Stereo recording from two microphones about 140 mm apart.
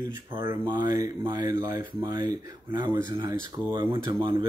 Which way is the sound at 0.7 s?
30° right (ahead or behind).